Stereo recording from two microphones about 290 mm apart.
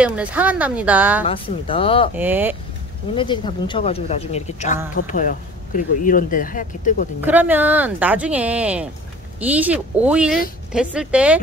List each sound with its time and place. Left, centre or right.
0.0 s speech: centre
1.2 s a woman's voice: centre
2.1 s speech: centre
3.2 s a woman's voice: centre
7.2 s speech: centre